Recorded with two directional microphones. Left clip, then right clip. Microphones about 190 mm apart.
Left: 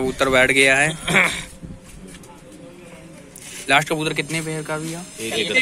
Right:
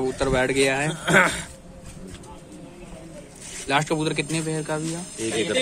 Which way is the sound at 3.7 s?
Centre (ahead or behind).